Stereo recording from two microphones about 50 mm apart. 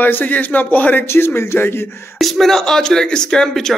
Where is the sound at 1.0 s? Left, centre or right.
Left.